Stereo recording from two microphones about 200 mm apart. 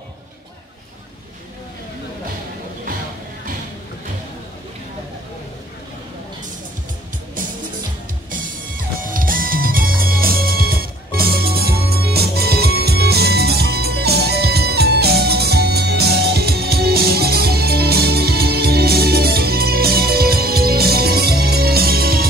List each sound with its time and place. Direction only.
8.3 s music: 45° right (ahead or behind)